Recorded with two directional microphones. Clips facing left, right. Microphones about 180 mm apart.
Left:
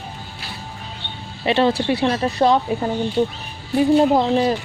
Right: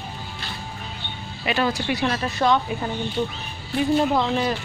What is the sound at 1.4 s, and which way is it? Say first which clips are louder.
Speech: left 6 dB; 30° left (ahead or behind).